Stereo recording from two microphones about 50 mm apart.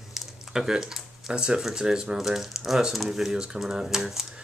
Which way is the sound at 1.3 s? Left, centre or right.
Centre.